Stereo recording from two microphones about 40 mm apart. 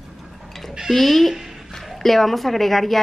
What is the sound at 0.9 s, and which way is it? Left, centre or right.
Speech, centre.